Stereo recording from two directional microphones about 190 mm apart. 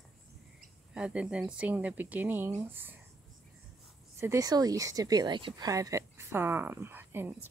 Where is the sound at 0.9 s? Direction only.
5° right (ahead or behind).